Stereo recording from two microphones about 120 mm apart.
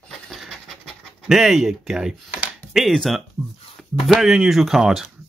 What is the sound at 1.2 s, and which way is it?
Speech, 5° right (ahead or behind).